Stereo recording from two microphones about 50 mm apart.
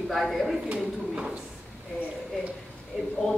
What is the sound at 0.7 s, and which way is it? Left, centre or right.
Speech, centre.